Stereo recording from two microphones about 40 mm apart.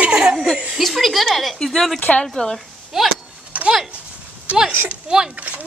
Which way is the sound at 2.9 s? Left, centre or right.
Centre.